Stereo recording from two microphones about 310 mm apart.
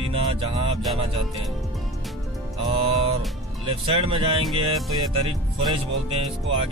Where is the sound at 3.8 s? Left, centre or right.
Centre.